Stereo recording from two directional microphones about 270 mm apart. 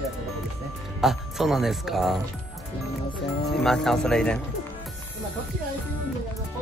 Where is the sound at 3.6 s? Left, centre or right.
Centre.